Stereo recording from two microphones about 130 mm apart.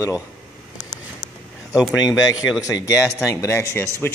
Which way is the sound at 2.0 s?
30° left (ahead or behind).